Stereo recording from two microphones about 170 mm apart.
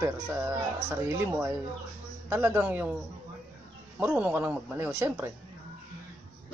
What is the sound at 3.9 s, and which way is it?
Speech, 10° right (ahead or behind).